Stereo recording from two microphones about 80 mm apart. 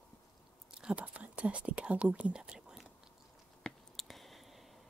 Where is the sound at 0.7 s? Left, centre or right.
Centre.